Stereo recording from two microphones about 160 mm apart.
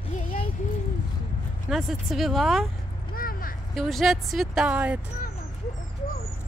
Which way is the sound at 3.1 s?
65° left (ahead or behind).